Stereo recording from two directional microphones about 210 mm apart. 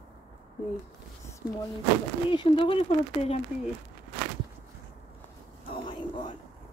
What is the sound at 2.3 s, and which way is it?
Speech, 25° left (ahead or behind).